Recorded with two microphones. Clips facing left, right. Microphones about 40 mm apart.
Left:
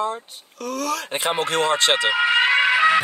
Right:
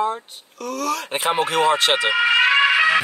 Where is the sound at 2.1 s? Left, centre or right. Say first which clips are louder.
Right 3 dB; right.